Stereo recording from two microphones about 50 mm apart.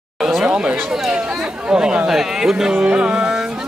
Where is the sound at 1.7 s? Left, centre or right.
Centre.